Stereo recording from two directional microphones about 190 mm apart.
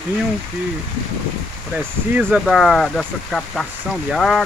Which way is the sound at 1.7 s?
5° right (ahead or behind).